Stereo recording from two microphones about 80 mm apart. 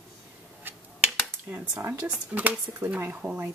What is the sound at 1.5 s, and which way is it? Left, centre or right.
Speech, right.